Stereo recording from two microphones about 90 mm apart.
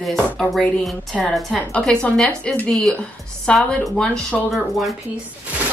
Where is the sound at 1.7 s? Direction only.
10° left (ahead or behind).